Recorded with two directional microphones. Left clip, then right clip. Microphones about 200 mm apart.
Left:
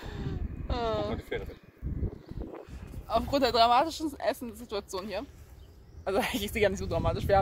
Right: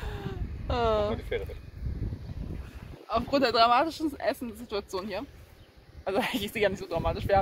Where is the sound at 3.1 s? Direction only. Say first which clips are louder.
Right 1 dB; 15° left (ahead or behind).